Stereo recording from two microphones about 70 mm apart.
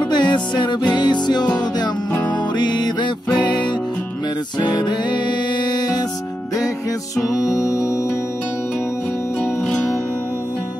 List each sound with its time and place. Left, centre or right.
0.1 s music: left
2.5 s music: left
4.6 s music: left
7.4 s music: left
9.7 s music: centre